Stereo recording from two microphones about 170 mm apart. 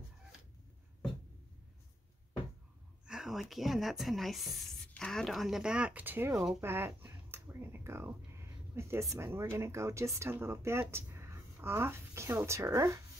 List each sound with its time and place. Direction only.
3.1 s speech: 5° right (ahead or behind)
6.6 s a sound: 15° right (ahead or behind)
8.7 s speech: 15° right (ahead or behind)